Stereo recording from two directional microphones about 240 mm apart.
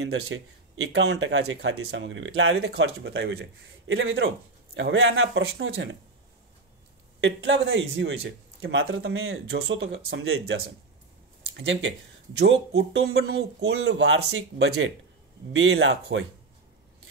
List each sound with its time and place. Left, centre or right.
0.0 s speech: right
7.2 s speech: right
8.9 s speech: right